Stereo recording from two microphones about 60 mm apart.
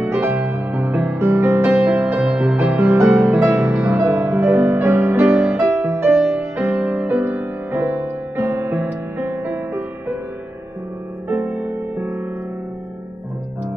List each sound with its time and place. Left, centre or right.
0.0 s music: right
1.1 s music: right
1.9 s music: right
2.7 s music: right
3.3 s music: right
4.1 s music: right
6.0 s music: centre
6.5 s music: right